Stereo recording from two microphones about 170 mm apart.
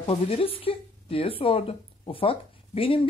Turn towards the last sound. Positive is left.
turn(degrees=30)  # may be behind; listen again after turning